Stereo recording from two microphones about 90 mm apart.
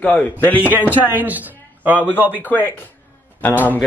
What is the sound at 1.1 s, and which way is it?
A man's voice, 20° right (ahead or behind).